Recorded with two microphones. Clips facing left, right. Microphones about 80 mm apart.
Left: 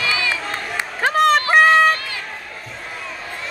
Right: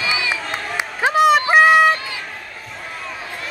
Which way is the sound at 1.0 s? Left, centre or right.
Centre.